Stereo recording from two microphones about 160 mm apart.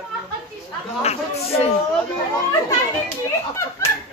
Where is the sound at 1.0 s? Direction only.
40° left (ahead or behind).